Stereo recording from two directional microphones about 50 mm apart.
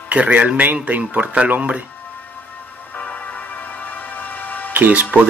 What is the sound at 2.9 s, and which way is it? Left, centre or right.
Music, left.